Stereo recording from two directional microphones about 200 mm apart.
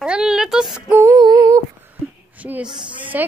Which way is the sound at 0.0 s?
5° right (ahead or behind).